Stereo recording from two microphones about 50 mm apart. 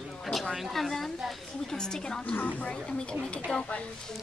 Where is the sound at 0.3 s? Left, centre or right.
Centre.